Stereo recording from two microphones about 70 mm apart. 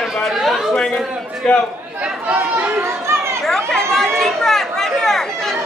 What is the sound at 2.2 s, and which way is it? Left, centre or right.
Chatter, right.